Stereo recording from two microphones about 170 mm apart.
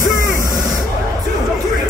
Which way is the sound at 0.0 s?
55° left (ahead or behind).